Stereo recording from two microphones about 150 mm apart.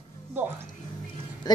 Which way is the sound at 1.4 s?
25° left (ahead or behind).